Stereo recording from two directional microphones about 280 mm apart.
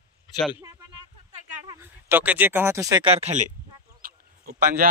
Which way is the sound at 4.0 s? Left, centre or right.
Right.